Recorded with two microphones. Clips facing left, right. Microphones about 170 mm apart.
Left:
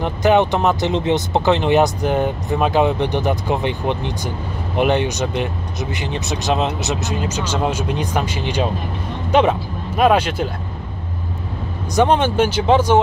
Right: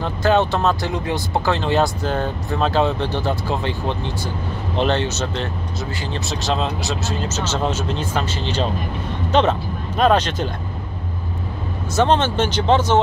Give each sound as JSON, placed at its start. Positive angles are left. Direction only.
{"t": 0.0, "sound": "speech", "side_deg": 15}
{"t": 11.9, "sound": "speech", "side_deg": 10}